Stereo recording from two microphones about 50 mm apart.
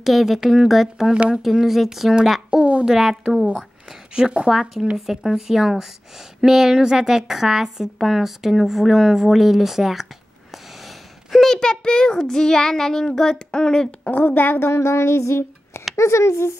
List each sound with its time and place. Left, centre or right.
0.0 s speech: centre
2.6 s speech: right
2.9 s a woman's voice: centre
4.1 s a woman's voice: centre
4.9 s a woman's voice: centre
11.3 s a child's voice: centre
14.1 s a sound: left
16.0 s speech: left